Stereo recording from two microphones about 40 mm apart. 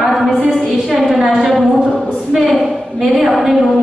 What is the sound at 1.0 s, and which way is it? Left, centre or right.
A woman's voice, centre.